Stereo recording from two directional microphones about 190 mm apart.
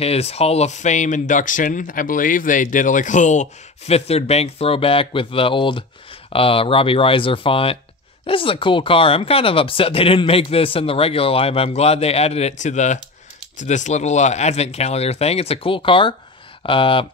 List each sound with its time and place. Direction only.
0.0 s speech: 35° left (ahead or behind)